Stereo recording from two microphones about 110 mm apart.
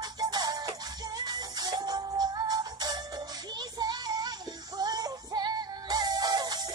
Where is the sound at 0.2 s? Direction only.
40° right (ahead or behind).